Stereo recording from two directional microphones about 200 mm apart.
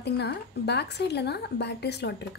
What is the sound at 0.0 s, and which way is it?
A woman's voice, 55° left (ahead or behind).